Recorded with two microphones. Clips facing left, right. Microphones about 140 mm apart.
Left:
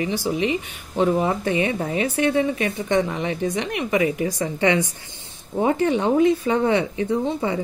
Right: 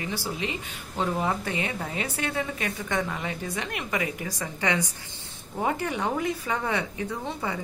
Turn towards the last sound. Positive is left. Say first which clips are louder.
# left 9 dB
turn(degrees=20)  # may be behind; listen again after turning